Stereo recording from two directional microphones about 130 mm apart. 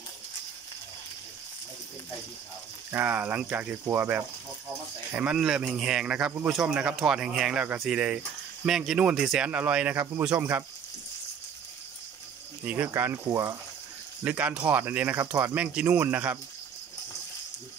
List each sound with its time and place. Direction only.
2.9 s speech: 15° right (ahead or behind)
12.6 s speech: 15° right (ahead or behind)
14.2 s speech: 10° right (ahead or behind)